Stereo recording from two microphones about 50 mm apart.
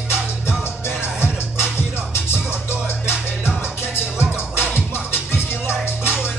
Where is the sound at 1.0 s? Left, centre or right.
Left.